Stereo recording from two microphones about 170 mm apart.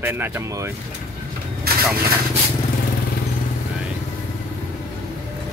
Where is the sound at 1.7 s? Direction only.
65° right (ahead or behind).